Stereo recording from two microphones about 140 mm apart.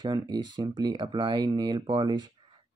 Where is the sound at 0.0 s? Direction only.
30° right (ahead or behind).